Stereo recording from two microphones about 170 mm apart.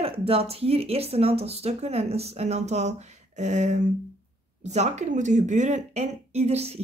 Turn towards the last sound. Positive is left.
turn(degrees=-40)  # may be behind; listen again after turning